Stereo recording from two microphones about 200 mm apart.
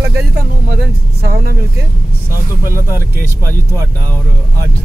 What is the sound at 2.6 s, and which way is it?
Speech, 15° left (ahead or behind).